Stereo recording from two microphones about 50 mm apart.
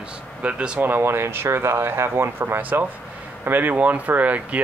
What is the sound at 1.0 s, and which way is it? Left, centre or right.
Speech, right.